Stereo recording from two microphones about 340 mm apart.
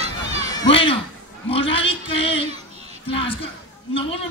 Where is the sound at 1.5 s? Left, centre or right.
Centre.